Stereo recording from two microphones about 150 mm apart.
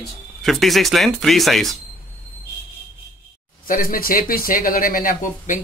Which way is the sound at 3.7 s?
70° left (ahead or behind).